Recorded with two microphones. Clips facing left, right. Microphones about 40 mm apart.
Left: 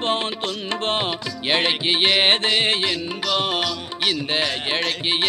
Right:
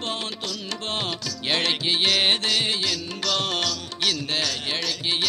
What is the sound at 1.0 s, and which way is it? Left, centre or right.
Music, left.